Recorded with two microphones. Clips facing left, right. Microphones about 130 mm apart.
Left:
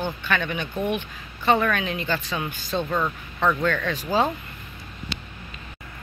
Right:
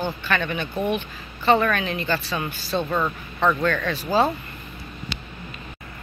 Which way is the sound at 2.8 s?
10° right (ahead or behind).